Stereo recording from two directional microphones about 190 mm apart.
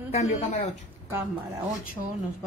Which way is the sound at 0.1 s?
35° left (ahead or behind).